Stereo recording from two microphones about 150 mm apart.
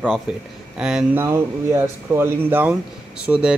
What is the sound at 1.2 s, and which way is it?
Speech, 15° right (ahead or behind).